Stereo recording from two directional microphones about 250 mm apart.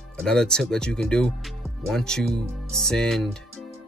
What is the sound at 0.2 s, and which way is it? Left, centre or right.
Speech, centre.